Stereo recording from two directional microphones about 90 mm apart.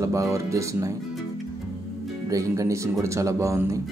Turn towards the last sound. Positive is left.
turn(degrees=-35)  # may be behind; listen again after turning